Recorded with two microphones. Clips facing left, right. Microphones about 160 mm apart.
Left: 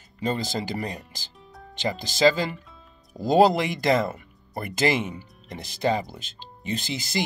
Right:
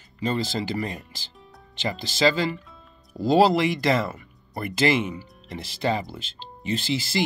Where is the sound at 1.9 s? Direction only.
45° left (ahead or behind).